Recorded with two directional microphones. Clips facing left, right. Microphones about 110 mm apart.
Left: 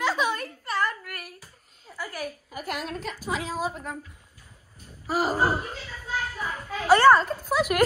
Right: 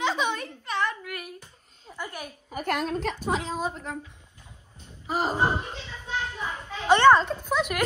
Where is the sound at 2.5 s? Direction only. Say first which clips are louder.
Right 8 dB; 5° left (ahead or behind).